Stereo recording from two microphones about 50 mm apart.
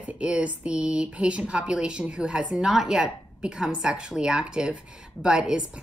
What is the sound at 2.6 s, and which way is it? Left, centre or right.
A woman's voice, centre.